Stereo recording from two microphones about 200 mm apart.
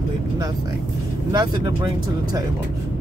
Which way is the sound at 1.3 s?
20° right (ahead or behind).